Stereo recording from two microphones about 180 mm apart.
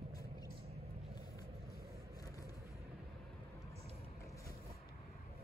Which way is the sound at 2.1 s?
20° left (ahead or behind).